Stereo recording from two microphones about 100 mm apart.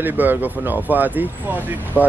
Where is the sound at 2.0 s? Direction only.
15° left (ahead or behind).